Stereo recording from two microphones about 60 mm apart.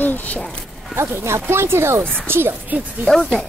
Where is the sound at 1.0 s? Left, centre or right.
Right.